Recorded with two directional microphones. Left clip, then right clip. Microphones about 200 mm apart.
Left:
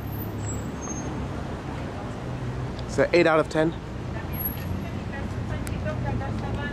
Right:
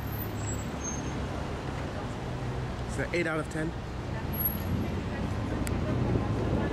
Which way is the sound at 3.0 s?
25° left (ahead or behind).